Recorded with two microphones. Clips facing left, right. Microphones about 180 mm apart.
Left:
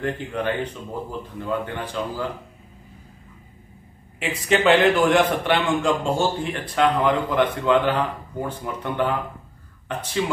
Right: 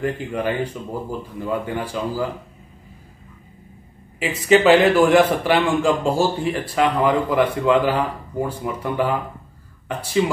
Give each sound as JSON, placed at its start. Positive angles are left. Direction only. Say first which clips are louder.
{"t": 0.0, "sound": "speech", "louder": "right 2 dB", "side_deg": -10}
{"t": 4.2, "sound": "a man's voice", "louder": "right 5 dB", "side_deg": 0}